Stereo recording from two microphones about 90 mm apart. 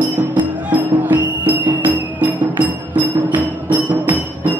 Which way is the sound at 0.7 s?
20° right (ahead or behind).